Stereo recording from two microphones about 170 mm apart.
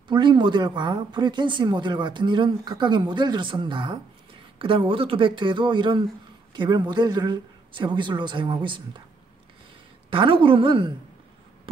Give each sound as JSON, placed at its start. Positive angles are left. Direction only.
{"t": 0.1, "sound": "speech", "side_deg": -25}
{"t": 10.0, "sound": "a woman's voice", "side_deg": -30}